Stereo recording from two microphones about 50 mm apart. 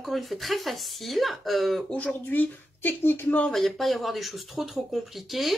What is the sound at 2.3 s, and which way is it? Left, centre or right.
Speech, left.